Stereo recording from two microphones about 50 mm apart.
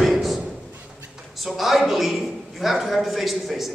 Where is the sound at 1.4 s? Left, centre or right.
Centre.